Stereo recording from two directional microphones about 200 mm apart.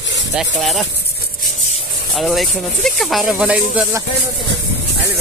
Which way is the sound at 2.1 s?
Centre (ahead or behind).